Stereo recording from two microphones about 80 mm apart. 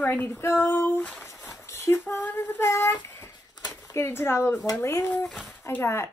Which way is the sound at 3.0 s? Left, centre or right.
Left.